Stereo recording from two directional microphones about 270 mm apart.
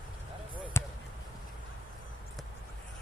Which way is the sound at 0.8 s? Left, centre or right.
Centre.